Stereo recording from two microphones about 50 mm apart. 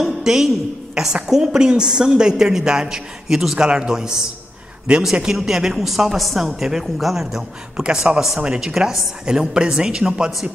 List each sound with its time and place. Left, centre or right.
0.0 s a sound: centre
0.9 s a woman's voice: centre
3.5 s a woman's voice: centre
5.3 s a woman's voice: centre